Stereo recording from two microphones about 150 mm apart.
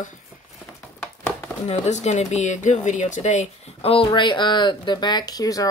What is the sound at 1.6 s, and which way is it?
Speech, 50° left (ahead or behind).